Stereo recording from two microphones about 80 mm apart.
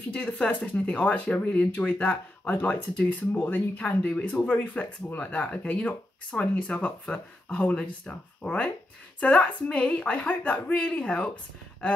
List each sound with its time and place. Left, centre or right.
0.1 s speech: centre